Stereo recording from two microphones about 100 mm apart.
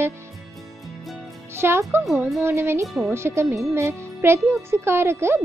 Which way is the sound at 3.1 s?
25° right (ahead or behind).